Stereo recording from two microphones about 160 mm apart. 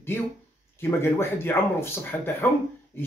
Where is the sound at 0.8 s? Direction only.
15° left (ahead or behind).